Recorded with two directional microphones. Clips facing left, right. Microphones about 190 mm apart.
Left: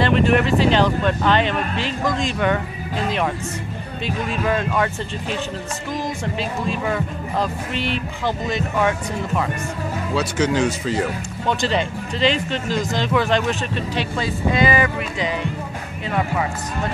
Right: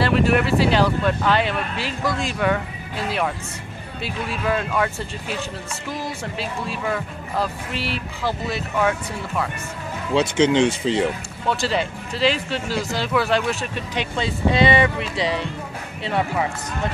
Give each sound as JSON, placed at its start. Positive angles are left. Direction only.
{"t": 0.0, "sound": "speech", "side_deg": -5}
{"t": 4.0, "sound": "speech", "side_deg": -5}
{"t": 10.1, "sound": "speech", "side_deg": -25}
{"t": 11.4, "sound": "speech", "side_deg": -5}